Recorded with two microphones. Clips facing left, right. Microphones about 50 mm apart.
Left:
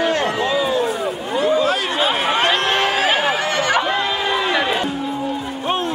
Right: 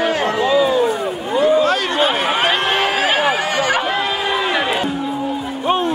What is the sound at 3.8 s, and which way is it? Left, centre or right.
Crowd, centre.